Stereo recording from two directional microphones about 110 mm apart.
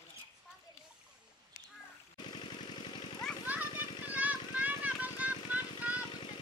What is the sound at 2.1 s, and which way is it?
Jackhammer, 45° left (ahead or behind).